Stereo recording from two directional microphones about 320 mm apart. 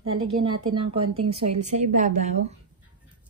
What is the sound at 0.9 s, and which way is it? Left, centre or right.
A woman's voice, centre.